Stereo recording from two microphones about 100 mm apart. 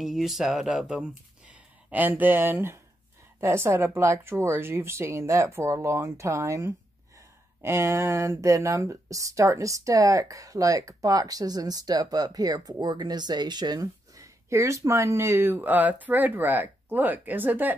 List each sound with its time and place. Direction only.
0.0 s speech: centre (ahead or behind); by 17.7 s 20° right (ahead or behind)